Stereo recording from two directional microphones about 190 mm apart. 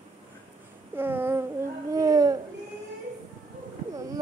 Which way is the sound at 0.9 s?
10° right (ahead or behind).